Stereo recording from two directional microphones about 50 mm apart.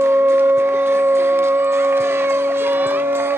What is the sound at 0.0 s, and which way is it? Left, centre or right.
Shofar, right.